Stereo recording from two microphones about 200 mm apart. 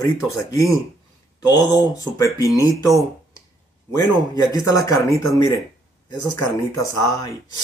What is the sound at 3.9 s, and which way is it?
Speech, 20° left (ahead or behind).